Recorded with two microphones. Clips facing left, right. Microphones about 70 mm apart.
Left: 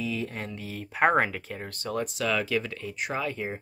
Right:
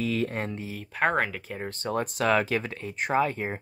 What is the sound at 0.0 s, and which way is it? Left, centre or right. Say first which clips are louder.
Speech: right 4 dB; right.